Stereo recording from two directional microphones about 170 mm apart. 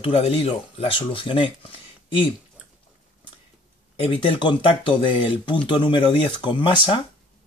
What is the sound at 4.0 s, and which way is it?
Speech, 30° left (ahead or behind).